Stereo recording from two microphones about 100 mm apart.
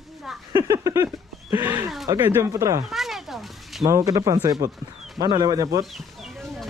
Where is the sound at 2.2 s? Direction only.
20° right (ahead or behind).